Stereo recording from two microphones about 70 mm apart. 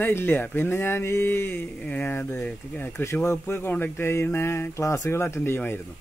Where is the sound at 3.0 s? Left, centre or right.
Left.